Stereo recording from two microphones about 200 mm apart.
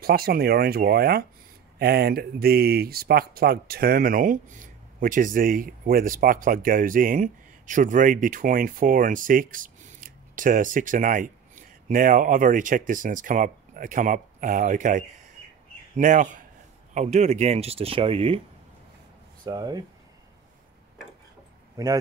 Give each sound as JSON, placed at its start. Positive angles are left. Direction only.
{"t": 0.0, "sound": "speech", "side_deg": -50}
{"t": 19.4, "sound": "speech", "side_deg": -20}
{"t": 21.8, "sound": "speech", "side_deg": -15}